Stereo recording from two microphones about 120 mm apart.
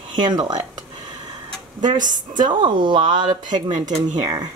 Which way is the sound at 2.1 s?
40° right (ahead or behind).